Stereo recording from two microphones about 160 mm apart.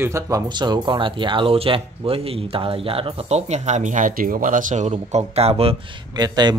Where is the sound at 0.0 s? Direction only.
20° right (ahead or behind).